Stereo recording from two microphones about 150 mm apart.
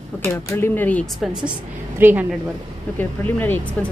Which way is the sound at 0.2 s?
20° left (ahead or behind).